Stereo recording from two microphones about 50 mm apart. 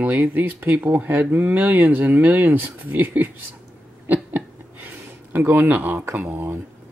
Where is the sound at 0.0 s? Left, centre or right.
Right.